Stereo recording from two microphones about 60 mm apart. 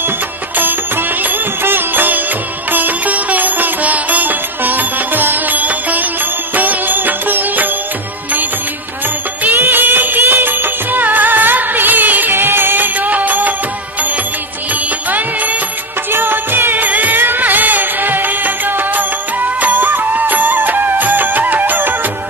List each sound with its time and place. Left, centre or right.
0.6 s music: right
9.4 s music of bollywood: right
14.7 s music: right